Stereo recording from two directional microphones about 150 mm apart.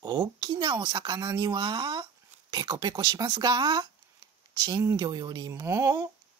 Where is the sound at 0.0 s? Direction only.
30° right (ahead or behind).